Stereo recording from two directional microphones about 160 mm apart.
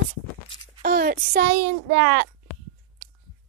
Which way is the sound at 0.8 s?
70° right (ahead or behind).